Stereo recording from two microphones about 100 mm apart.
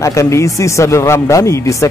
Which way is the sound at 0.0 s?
30° left (ahead or behind).